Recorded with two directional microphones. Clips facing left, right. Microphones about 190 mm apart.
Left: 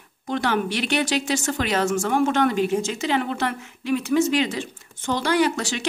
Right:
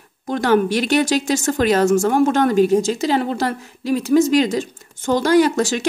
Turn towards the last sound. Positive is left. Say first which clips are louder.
# right 7 dB
turn(degrees=-45)  # may be behind; listen again after turning